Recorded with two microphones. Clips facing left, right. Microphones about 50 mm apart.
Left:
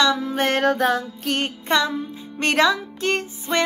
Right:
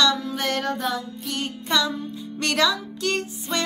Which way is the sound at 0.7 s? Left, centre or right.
Left.